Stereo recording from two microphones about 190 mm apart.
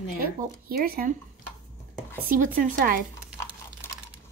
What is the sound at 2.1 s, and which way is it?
Speech, 45° right (ahead or behind).